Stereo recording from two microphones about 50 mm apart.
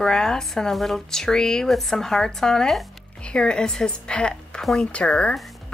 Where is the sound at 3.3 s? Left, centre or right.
Centre.